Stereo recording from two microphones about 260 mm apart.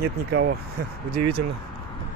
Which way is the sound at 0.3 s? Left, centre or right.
Right.